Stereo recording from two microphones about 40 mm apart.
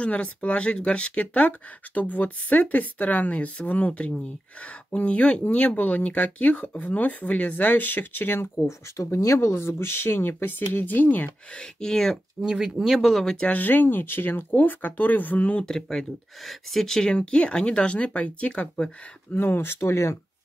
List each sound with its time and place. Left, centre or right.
0.0 s speech: left
9.1 s speech: left
11.2 s speech: left
12.6 s speech: centre
13.1 s speech: centre
13.5 s speech: left
15.6 s speech: centre
17.1 s speech: left
19.3 s speech: left